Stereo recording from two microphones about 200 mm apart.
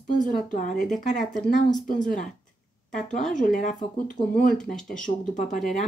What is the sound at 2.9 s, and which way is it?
Speech, 40° left (ahead or behind).